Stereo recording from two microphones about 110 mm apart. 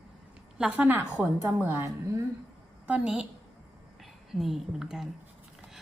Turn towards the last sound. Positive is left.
turn(degrees=-5)  # may be behind; listen again after turning